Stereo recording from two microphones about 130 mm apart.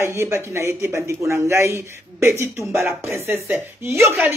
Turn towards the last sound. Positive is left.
turn(degrees=-20)  # may be behind; listen again after turning